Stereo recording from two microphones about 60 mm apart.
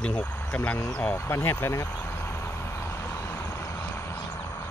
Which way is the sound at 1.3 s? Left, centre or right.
Left.